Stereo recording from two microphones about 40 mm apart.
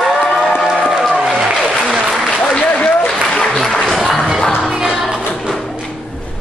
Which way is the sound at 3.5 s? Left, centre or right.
Centre.